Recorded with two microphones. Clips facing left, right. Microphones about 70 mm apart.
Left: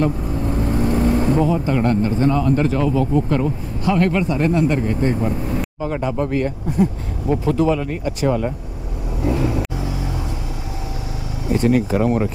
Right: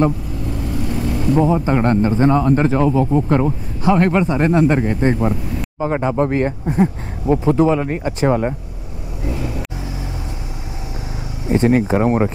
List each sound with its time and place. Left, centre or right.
0.7 s vehicle: left
1.3 s speech: right
9.2 s vehicle: left
11.4 s speech: right